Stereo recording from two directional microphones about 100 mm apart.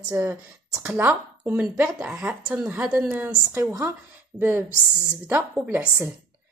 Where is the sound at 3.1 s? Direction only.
25° right (ahead or behind).